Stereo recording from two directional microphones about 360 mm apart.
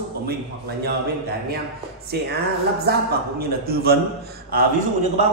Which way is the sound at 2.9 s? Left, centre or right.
Right.